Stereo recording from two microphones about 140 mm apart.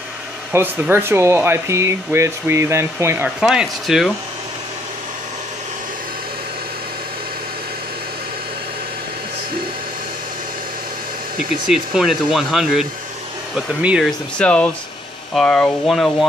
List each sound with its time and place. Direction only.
0.5 s speech: 15° right (ahead or behind)
3.3 s speech: 5° right (ahead or behind)
11.7 s speech: 5° right (ahead or behind)
14.4 s speech: 5° left (ahead or behind)